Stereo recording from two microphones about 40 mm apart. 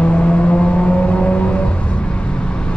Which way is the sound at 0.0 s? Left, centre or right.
Left.